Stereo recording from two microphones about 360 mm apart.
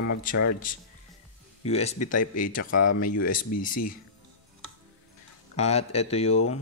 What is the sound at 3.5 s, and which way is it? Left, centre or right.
Speech, left.